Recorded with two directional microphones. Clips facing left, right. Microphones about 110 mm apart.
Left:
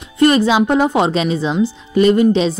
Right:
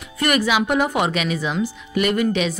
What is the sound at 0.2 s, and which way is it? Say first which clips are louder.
A woman's voice: left 7 dB; 25° left (ahead or behind).